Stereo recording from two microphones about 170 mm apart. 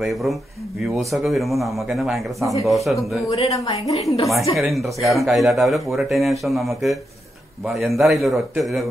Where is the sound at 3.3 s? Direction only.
35° left (ahead or behind).